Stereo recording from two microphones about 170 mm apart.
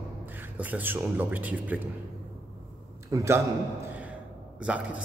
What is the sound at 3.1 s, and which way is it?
Speech, 15° right (ahead or behind).